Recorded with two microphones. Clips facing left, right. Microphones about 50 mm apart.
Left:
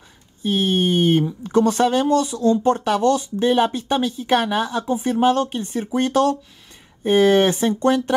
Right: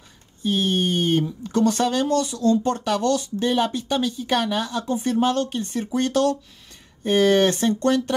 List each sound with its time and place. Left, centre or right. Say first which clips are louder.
0.4 s speech: left 2 dB; centre